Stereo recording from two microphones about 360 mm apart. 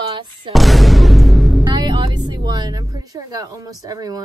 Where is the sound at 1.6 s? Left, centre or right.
Centre.